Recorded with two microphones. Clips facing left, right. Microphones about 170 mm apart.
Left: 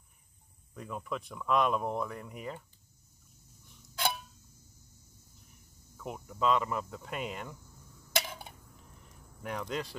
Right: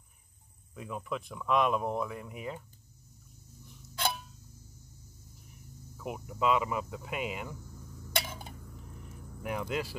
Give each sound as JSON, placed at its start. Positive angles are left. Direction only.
{"t": 0.7, "sound": "speech", "side_deg": -5}
{"t": 3.6, "sound": "clock", "side_deg": 0}
{"t": 5.9, "sound": "speech", "side_deg": -5}
{"t": 8.2, "sound": "a sound", "side_deg": 0}
{"t": 9.4, "sound": "speech", "side_deg": -5}